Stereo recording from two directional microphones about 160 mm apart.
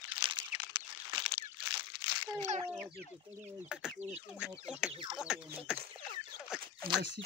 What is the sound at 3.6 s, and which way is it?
Speech, 5° right (ahead or behind).